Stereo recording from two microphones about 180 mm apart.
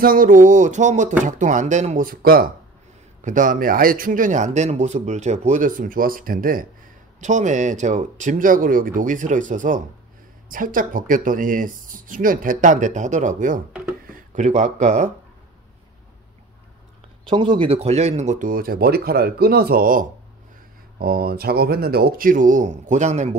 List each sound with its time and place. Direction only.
0.0 s speech: 50° right (ahead or behind)
17.3 s speech: 30° right (ahead or behind)